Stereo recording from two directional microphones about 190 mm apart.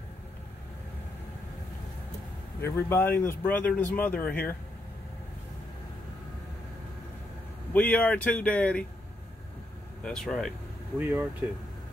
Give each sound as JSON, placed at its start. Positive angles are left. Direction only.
{"t": 2.6, "sound": "speech", "side_deg": 10}
{"t": 7.7, "sound": "speech", "side_deg": 10}
{"t": 10.0, "sound": "speech", "side_deg": 0}
{"t": 11.0, "sound": "speech", "side_deg": -10}